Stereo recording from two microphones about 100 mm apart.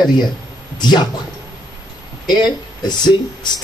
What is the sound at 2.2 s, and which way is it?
Speech, 45° left (ahead or behind).